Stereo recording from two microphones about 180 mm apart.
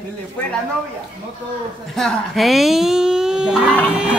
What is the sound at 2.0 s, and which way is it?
A woman's voice, centre (ahead or behind).